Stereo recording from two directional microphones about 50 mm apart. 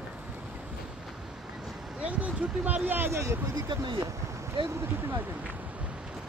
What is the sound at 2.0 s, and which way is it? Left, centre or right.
Speech, right.